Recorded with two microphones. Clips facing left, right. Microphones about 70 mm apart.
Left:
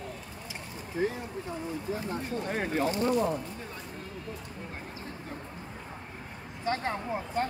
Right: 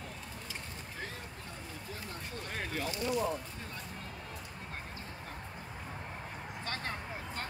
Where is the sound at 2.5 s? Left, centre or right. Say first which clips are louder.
Left 8 dB; left.